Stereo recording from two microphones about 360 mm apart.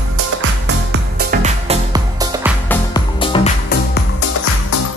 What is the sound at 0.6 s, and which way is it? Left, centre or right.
Music, right.